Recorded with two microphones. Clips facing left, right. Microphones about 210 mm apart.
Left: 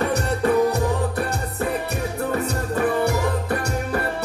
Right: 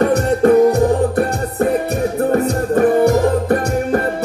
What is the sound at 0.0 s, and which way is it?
Music, 50° right (ahead or behind).